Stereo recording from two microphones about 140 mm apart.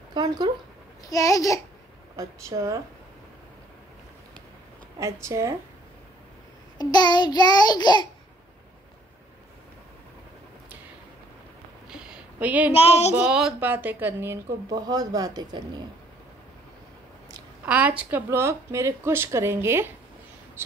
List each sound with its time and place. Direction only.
0.1 s speech: 30° right (ahead or behind)
1.0 s child singing: 25° left (ahead or behind)
2.1 s speech: 25° right (ahead or behind)
4.9 s speech: 20° right (ahead or behind)
6.8 s child singing: 30° left (ahead or behind)
11.9 s a sound: 5° right (ahead or behind)
12.7 s speech: 50° left (ahead or behind)
13.1 s a woman's voice: 5° right (ahead or behind); by 15.8 s 30° right (ahead or behind)
17.6 s a woman's voice: 10° right (ahead or behind)